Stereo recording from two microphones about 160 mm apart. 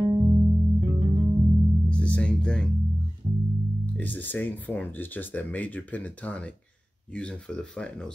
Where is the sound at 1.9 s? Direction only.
5° left (ahead or behind).